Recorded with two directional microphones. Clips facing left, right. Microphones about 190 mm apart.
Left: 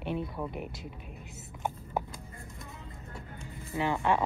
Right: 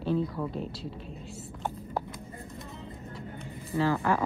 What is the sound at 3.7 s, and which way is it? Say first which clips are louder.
Speech: right 2 dB; 20° left (ahead or behind).